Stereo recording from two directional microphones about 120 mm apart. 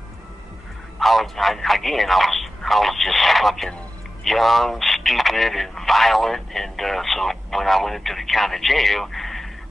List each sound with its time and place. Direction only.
0.9 s speech: centre (ahead or behind)